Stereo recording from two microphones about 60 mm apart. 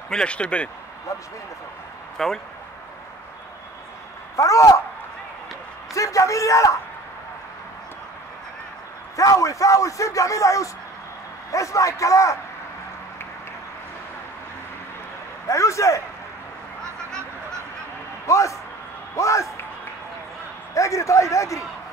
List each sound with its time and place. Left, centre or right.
0.1 s speech: centre
2.1 s speech: centre
4.4 s speech: left
5.9 s a man's voice: left
9.1 s a man's voice: left
15.4 s a man's voice: left
18.2 s a man's voice: left
20.7 s a man's voice: left